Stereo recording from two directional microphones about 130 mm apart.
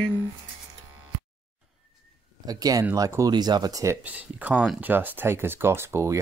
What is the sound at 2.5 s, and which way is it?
Speech, 30° right (ahead or behind).